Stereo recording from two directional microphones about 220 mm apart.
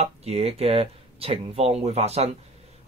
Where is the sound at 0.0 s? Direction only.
30° right (ahead or behind).